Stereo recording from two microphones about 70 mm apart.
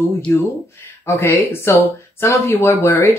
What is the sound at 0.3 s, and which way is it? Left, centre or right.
Speech, left.